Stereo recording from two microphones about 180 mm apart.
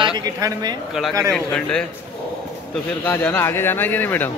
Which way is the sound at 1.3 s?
5° left (ahead or behind).